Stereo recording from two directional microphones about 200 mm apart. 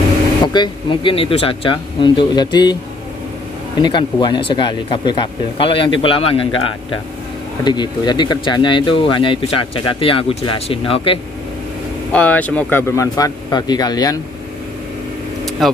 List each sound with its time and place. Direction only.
0.5 s speech: 25° left (ahead or behind)
3.8 s speech: 20° left (ahead or behind)
7.6 s speech: 20° left (ahead or behind)
12.1 s speech: 10° left (ahead or behind)
15.6 s speech: centre (ahead or behind)